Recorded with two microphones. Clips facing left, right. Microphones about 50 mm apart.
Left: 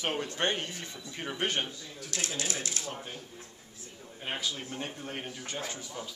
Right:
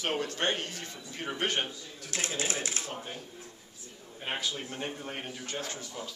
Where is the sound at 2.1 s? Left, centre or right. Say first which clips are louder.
Right 2 dB; right.